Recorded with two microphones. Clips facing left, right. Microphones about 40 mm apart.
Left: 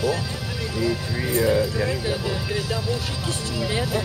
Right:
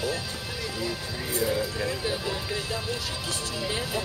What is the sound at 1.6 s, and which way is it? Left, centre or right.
Music, left.